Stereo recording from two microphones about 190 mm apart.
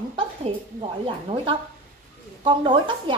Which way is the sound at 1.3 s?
30° right (ahead or behind).